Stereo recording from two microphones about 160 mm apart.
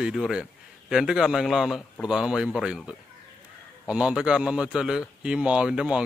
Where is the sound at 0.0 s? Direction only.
5° right (ahead or behind).